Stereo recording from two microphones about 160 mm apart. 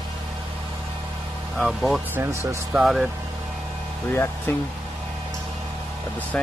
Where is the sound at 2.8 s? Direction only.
Centre (ahead or behind).